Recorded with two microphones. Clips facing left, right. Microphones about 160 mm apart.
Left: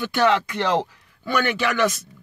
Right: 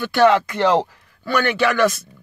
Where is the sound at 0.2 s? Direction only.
50° right (ahead or behind).